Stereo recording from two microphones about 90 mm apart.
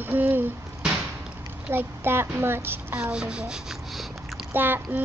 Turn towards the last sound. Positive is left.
turn(degrees=-20)  # may be behind; listen again after turning